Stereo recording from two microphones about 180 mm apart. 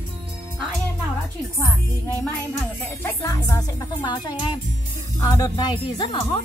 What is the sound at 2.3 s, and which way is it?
Speech, 10° left (ahead or behind).